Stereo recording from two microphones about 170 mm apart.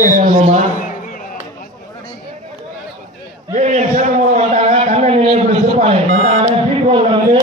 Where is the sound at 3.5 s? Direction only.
45° right (ahead or behind).